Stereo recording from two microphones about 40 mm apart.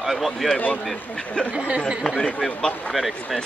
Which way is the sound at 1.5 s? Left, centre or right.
Right.